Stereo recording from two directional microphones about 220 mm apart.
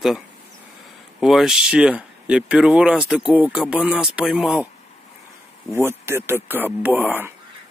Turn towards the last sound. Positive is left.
turn(degrees=-10)  # may be behind; listen again after turning